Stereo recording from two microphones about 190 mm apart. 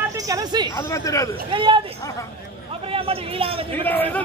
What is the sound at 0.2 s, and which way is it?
Speech, 20° right (ahead or behind).